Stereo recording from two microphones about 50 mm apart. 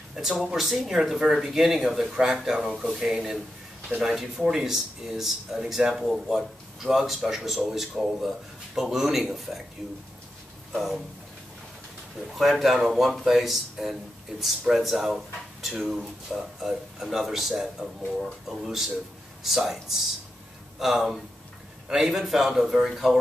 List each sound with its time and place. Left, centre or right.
0.1 s speech: centre
12.4 s speech: centre
20.8 s speech: centre